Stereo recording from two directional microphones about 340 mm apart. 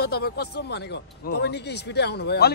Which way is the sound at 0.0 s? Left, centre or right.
Left.